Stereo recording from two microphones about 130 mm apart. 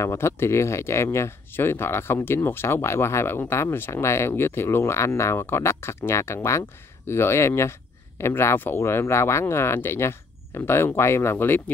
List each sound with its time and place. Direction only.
0.0 s speech: 20° left (ahead or behind)